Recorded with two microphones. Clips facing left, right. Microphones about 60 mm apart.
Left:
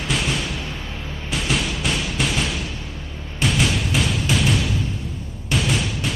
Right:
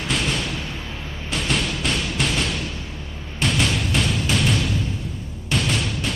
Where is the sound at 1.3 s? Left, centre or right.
Centre.